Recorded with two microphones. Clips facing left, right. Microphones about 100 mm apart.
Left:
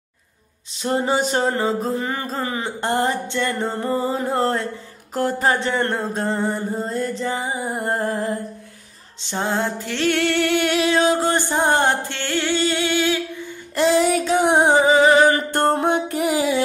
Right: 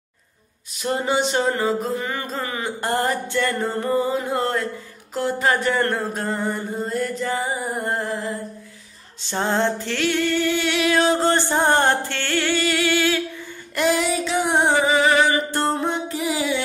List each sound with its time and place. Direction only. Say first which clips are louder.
0.7 s a sound: left 2 dB; 30° left (ahead or behind)
5.7 s music: even; 20° left (ahead or behind)
7.2 s music: even; 15° left (ahead or behind)
8.0 s music: left 3 dB; 45° left (ahead or behind)
9.3 s music: right 1 dB; 10° left (ahead or behind)
10.0 s music: left 2 dB; 70° left (ahead or behind)
10.7 s music: left 1 dB; 35° left (ahead or behind)
11.0 s music: even; 15° left (ahead or behind)
13.7 s music: left 3 dB; 30° left (ahead or behind)
14.0 s music: left 4 dB; 45° left (ahead or behind)
14.5 s music: left 3 dB; 15° left (ahead or behind)
14.8 s music: left 4 dB; 25° left (ahead or behind)
15.2 s music: left 4 dB; 50° left (ahead or behind)